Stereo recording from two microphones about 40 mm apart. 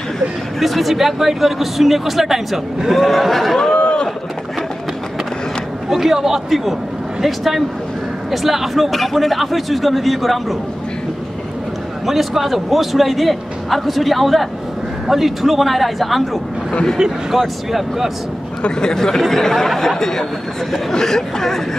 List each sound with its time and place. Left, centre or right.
0.6 s speech: centre
3.7 s a sound: left
5.9 s a man's voice: centre
12.1 s speech: centre
17.3 s speech: centre
18.8 s speech: centre